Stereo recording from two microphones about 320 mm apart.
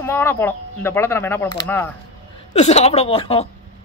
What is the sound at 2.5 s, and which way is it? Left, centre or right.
Speech, centre.